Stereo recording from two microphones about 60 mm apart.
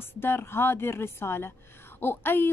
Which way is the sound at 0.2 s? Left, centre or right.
Left.